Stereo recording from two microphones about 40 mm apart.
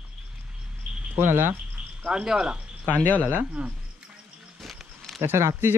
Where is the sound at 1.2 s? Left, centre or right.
Right.